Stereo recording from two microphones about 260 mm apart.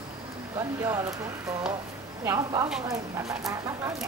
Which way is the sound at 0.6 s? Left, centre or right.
Centre.